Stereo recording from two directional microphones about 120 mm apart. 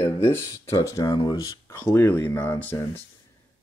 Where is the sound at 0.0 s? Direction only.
20° left (ahead or behind).